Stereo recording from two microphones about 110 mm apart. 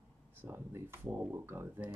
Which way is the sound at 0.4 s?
20° right (ahead or behind).